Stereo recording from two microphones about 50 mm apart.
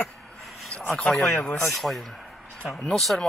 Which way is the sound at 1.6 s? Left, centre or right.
Centre.